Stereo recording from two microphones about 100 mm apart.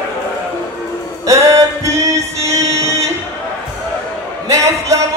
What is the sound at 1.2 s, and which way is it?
Music, 30° right (ahead or behind).